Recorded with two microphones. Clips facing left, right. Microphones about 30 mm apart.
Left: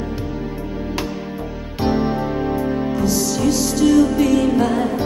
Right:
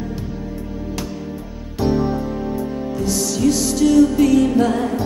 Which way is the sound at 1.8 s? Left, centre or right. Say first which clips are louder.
Even; left.